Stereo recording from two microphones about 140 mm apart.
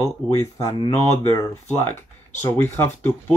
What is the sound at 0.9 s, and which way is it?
Speech, 20° left (ahead or behind).